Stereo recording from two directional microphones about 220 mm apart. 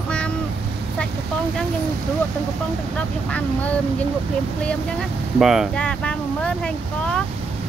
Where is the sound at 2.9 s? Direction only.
5° left (ahead or behind).